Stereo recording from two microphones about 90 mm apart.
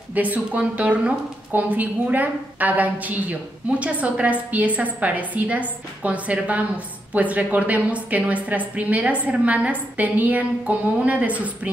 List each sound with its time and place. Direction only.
0.1 s a woman's voice: 20° right (ahead or behind)